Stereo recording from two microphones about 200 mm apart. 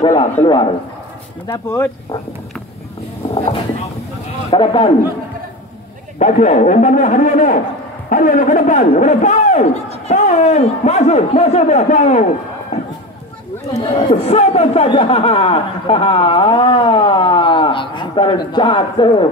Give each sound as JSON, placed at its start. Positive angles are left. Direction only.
{"t": 0.0, "sound": "speech", "side_deg": 25}
{"t": 4.5, "sound": "speech", "side_deg": 25}
{"t": 6.1, "sound": "speech", "side_deg": 35}
{"t": 12.7, "sound": "a sound", "side_deg": 30}
{"t": 13.7, "sound": "speech", "side_deg": 30}